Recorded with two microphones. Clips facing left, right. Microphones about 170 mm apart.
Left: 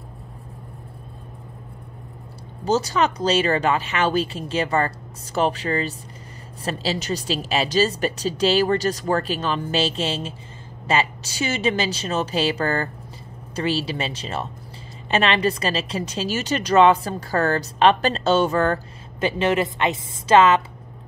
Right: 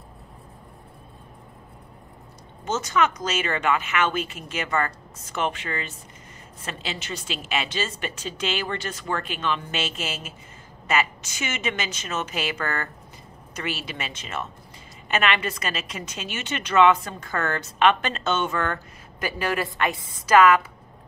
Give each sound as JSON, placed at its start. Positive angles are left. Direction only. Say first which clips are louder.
{"t": 2.6, "sound": "a woman's voice", "louder": "left 3 dB", "side_deg": 35}